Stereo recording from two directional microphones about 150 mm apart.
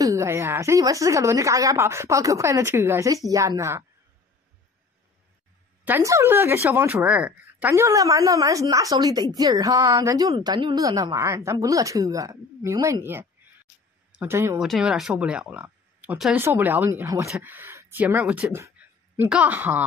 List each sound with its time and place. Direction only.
0.0 s speech: 20° right (ahead or behind)
5.9 s speech: 15° right (ahead or behind)
14.6 s speech: 5° right (ahead or behind)